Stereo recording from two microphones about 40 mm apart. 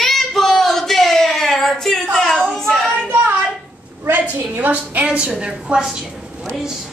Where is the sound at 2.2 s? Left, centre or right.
Centre.